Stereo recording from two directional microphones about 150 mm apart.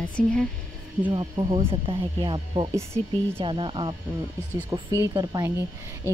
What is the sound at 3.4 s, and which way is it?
Music, 35° right (ahead or behind).